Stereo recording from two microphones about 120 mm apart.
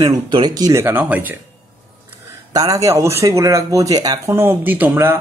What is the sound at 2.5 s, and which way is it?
Speech, 30° right (ahead or behind).